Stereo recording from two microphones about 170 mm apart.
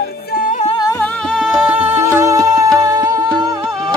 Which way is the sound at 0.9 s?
5° left (ahead or behind).